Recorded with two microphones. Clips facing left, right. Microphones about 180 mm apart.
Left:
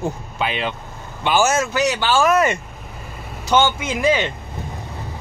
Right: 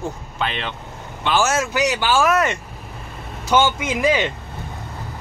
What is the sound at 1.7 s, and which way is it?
Speech, 10° right (ahead or behind).